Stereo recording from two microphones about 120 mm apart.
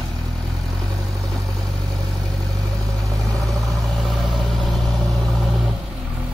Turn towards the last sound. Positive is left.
turn(degrees=0)  # may be behind; listen again after turning